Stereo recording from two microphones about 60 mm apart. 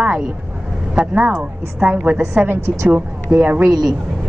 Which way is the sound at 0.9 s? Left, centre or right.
Centre.